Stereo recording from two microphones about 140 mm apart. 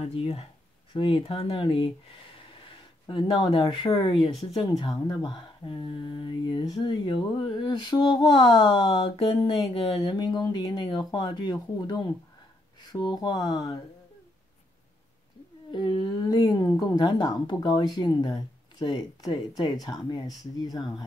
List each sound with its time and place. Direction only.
0.0 s speech: 45° left (ahead or behind); by 13.7 s 30° left (ahead or behind)
15.7 s speech: 35° left (ahead or behind)